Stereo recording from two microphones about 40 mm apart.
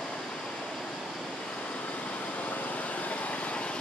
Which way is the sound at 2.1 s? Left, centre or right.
Left.